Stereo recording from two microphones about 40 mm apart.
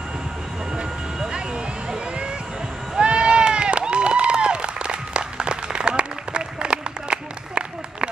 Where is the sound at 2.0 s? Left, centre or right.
Right.